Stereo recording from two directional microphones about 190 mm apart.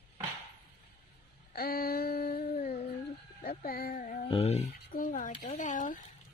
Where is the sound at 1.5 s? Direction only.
55° left (ahead or behind).